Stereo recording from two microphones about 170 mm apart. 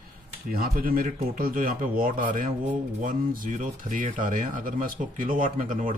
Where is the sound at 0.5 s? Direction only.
60° right (ahead or behind).